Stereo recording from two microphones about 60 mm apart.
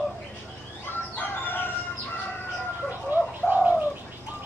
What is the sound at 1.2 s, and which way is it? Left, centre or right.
Crowing, left.